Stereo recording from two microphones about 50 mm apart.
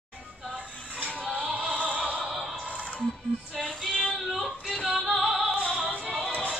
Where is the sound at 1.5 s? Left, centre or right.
Right.